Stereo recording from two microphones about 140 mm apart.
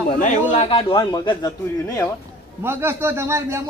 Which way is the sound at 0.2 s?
60° left (ahead or behind).